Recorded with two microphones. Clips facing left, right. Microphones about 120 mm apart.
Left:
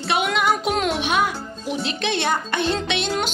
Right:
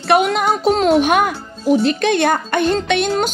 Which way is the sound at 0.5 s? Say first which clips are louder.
Right 8 dB; 35° right (ahead or behind).